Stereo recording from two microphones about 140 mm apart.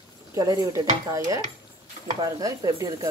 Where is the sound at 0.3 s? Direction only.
25° right (ahead or behind).